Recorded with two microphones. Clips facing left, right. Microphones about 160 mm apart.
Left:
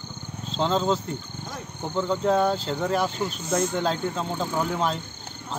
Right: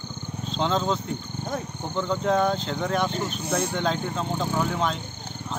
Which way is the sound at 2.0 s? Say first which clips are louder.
Left 1 dB; 5° left (ahead or behind).